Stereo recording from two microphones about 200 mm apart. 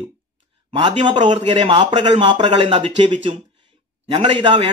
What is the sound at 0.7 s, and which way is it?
Speech, 25° right (ahead or behind).